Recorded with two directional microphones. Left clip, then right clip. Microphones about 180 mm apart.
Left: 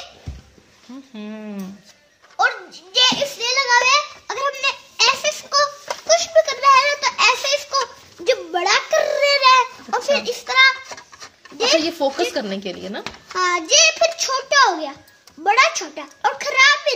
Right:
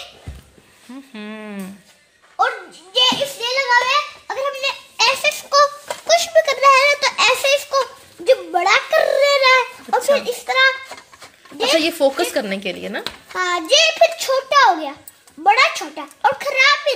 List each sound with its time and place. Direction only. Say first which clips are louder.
1.1 s a woman's voice: right 2 dB; centre (ahead or behind)
2.3 s a child's voice: even; 20° right (ahead or behind)
4.3 s a sound: left 3 dB; 30° right (ahead or behind)
10.1 s a child's voice: right 1 dB; 30° right (ahead or behind)
11.5 s a sound: even; 25° right (ahead or behind)
11.8 s a woman's voice: right 3 dB; 10° right (ahead or behind)
13.3 s a child's voice: right 1 dB; 25° right (ahead or behind)